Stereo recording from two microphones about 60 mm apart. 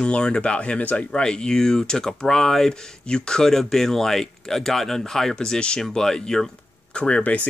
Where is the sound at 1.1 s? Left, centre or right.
Centre.